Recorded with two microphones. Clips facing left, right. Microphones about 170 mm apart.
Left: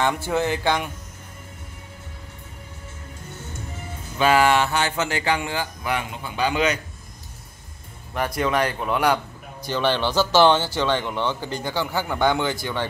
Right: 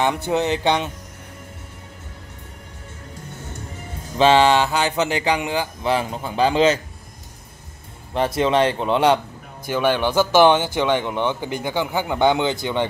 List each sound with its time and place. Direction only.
0.0 s speech: 20° right (ahead or behind)
4.2 s speech: 25° right (ahead or behind)
8.1 s speech: 25° right (ahead or behind)
9.7 s speech: 10° right (ahead or behind)